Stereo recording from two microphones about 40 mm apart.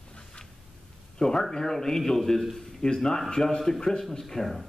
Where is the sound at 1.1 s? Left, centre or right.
Centre.